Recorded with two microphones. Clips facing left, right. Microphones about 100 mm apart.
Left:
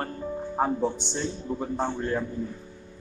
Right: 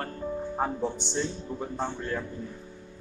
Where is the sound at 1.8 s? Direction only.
20° left (ahead or behind).